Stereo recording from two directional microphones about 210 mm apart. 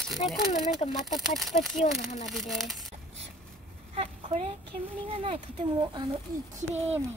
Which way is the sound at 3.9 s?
30° right (ahead or behind).